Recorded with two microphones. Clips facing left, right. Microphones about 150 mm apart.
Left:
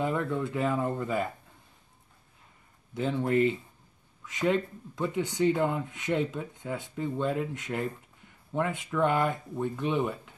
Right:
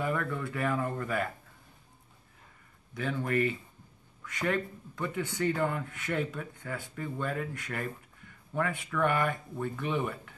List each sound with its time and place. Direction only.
0.0 s speech: 25° left (ahead or behind)
2.9 s speech: 25° left (ahead or behind)